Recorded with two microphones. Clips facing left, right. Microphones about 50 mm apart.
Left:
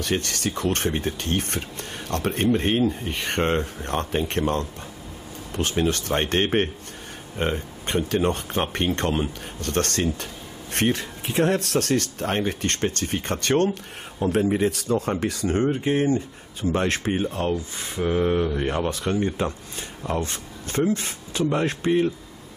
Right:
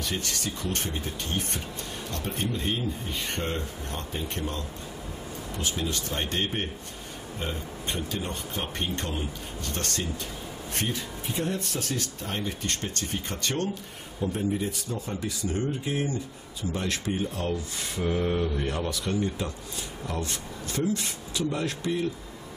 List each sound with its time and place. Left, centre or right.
0.0 s speech: left
14.2 s speech: left